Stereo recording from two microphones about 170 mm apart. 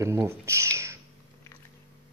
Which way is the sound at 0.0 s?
15° right (ahead or behind).